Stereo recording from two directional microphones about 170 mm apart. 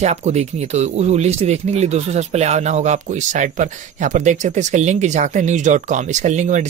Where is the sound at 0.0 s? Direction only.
40° right (ahead or behind).